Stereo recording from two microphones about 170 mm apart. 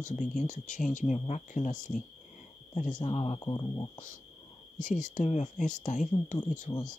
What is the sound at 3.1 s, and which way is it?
Speech, 35° left (ahead or behind).